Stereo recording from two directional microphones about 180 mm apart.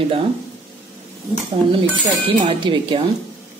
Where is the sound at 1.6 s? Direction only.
30° right (ahead or behind).